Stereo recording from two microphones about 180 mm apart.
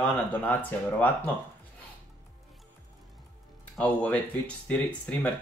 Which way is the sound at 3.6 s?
5° left (ahead or behind).